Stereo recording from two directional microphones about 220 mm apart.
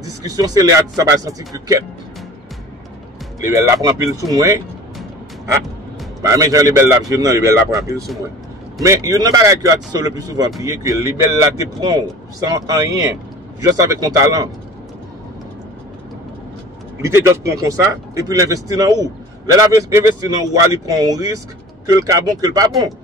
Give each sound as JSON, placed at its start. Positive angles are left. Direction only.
{"t": 0.0, "sound": "a man's voice", "side_deg": -15}
{"t": 3.3, "sound": "a man's voice", "side_deg": -15}
{"t": 6.2, "sound": "a man's voice", "side_deg": -15}
{"t": 17.0, "sound": "a man's voice", "side_deg": -15}